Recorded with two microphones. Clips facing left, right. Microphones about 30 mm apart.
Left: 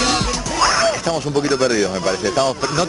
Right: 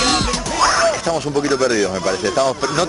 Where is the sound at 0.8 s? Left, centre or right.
Left.